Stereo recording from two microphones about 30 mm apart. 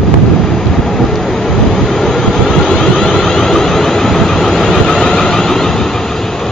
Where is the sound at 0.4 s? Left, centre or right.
Centre.